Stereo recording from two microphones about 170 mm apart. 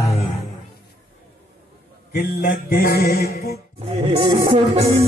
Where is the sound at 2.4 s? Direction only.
65° left (ahead or behind).